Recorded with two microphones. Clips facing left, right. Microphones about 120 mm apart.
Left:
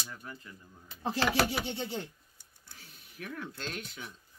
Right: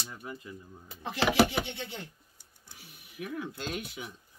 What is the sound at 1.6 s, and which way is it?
Speech, 35° left (ahead or behind).